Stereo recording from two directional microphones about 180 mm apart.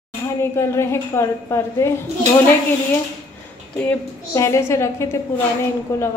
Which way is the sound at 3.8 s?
10° left (ahead or behind).